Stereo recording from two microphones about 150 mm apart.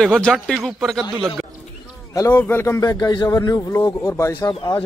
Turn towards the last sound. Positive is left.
turn(degrees=30)  # may be behind; listen again after turning